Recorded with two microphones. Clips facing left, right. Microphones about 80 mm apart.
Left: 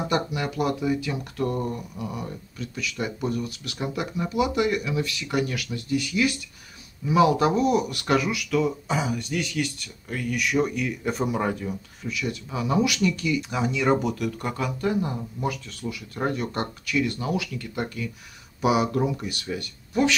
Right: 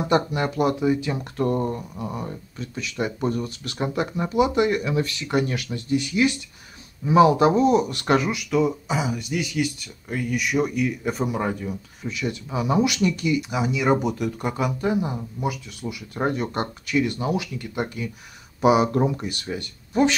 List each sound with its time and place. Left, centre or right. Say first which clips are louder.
0.1 s speech: right 8 dB; right; by 10.5 s centre
10.5 s speech: right 2 dB; centre
12.1 s speech: right 2 dB; right
13.4 s speech: right 1 dB; centre; by 20.2 s right